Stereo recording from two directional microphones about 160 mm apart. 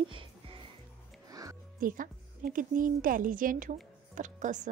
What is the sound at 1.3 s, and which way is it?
Music, 20° right (ahead or behind).